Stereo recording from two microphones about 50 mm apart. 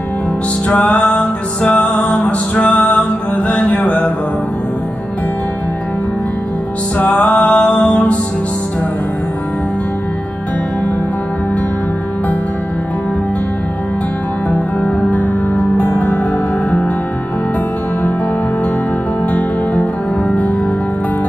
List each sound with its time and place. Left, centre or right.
0.7 s music: left
7.0 s music: left
7.3 s mantra: left
14.8 s music: left
19.3 s music: left